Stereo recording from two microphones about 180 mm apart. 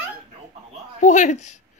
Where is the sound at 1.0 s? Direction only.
45° left (ahead or behind).